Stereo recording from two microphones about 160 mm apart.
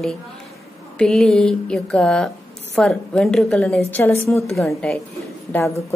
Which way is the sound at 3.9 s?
15° left (ahead or behind).